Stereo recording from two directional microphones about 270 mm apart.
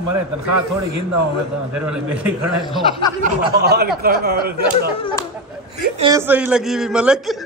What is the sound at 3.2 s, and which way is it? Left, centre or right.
Speech, right.